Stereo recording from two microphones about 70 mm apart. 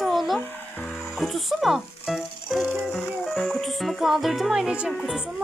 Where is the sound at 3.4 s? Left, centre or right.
Centre.